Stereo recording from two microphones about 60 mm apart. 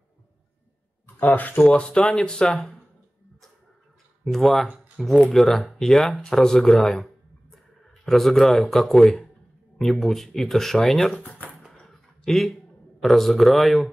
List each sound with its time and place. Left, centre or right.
1.0 s speech: left
1.6 s speech: centre
4.2 s speech: centre
11.2 s speech: left
11.8 s a sound: centre
13.0 s speech: centre